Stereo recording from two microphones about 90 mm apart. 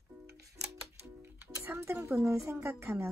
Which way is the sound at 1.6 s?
25° right (ahead or behind).